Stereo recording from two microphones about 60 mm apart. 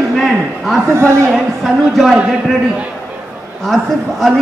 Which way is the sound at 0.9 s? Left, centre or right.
Right.